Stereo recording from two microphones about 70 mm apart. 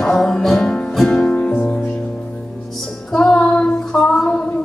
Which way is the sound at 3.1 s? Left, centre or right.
Centre.